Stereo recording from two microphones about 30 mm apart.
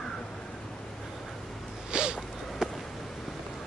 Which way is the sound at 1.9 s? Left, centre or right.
Right.